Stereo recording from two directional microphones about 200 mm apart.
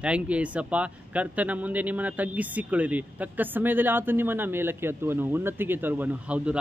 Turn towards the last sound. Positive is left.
turn(degrees=-5)  # may be behind; listen again after turning